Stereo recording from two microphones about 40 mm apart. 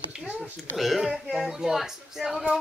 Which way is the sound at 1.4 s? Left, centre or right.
Centre.